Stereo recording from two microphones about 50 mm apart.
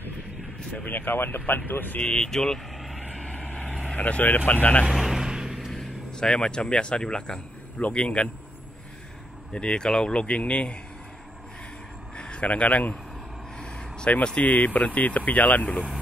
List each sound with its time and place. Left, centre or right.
0.8 s speech: left
2.0 s speech: left
2.2 s speech: centre
3.0 s vehicle: centre
3.9 s speech: left
4.8 s vehicle: centre
5.7 s speech: centre
9.5 s speech: left
12.2 s a man's voice: left
13.6 s vehicle: centre
14.2 s speech: left